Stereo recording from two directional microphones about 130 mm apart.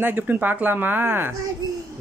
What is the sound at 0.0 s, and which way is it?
Speech, 15° right (ahead or behind).